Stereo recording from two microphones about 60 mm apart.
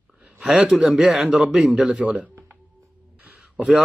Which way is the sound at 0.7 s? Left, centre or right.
Centre.